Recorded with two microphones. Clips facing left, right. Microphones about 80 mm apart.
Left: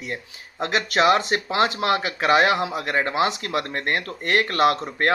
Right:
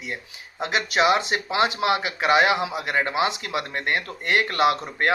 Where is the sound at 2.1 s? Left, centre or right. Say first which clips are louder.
Left 1 dB; right.